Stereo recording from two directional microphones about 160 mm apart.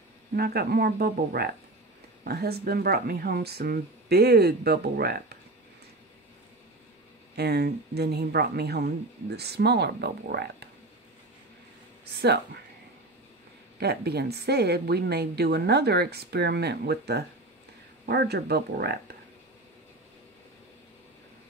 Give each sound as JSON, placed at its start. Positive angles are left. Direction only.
{"t": 0.4, "sound": "speech", "side_deg": -80}
{"t": 7.3, "sound": "a woman's voice", "side_deg": -90}
{"t": 12.1, "sound": "a woman's voice", "side_deg": -90}
{"t": 13.7, "sound": "a woman's voice", "side_deg": -90}